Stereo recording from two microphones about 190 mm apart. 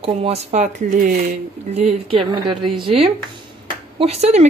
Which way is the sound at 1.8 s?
30° right (ahead or behind).